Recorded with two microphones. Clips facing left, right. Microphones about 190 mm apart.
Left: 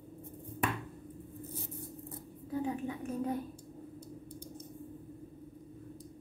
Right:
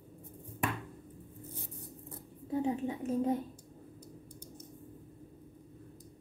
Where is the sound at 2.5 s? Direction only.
25° right (ahead or behind).